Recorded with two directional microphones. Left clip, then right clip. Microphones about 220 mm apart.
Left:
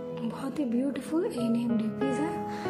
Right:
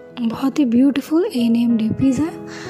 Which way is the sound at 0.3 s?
45° right (ahead or behind).